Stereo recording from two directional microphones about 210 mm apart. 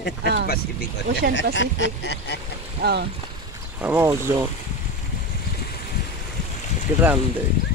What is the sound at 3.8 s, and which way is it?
Speech, 10° right (ahead or behind).